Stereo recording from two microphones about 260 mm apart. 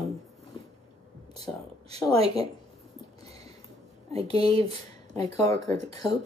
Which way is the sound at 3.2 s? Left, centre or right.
Right.